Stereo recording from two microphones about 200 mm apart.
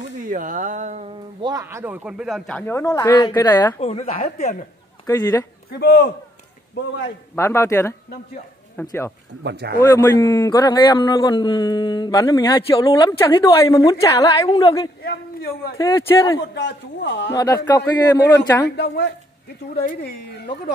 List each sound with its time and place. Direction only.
0.3 s a sound: 40° right (ahead or behind)
1.4 s speech: 15° right (ahead or behind); by 3.8 s 15° left (ahead or behind)
3.8 s a woman's voice: 30° left (ahead or behind)
5.0 s a man's voice: 20° left (ahead or behind)
5.7 s a man's voice: 55° left (ahead or behind)
7.3 s speech: 15° left (ahead or behind)
9.4 s speech: 55° right (ahead or behind)
9.8 s a man's voice: 15° left (ahead or behind)
15.0 s a man's voice: 55° left (ahead or behind)
17.3 s speech: 15° left (ahead or behind)
18.8 s a man's voice: 55° left (ahead or behind)